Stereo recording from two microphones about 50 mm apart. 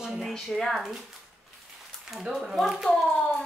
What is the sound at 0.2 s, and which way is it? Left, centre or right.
Speech, centre.